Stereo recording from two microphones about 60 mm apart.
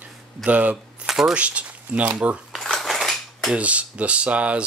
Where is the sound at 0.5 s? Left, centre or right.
Right.